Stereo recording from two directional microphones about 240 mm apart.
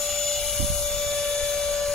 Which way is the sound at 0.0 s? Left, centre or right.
Centre.